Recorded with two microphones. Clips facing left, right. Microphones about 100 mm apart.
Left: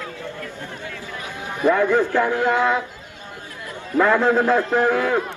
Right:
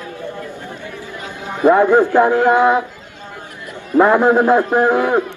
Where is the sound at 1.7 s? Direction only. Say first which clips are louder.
Right 6 dB; 20° right (ahead or behind).